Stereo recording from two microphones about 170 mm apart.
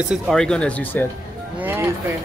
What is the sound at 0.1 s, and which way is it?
Speech, centre (ahead or behind).